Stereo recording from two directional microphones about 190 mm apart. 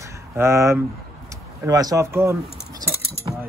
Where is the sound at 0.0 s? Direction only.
15° right (ahead or behind).